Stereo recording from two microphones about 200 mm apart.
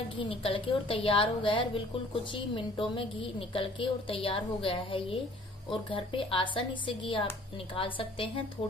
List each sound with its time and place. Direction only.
0.1 s a woman's voice: 25° left (ahead or behind)